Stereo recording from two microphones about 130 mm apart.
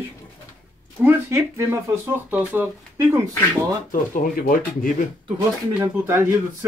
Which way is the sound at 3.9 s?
90° left.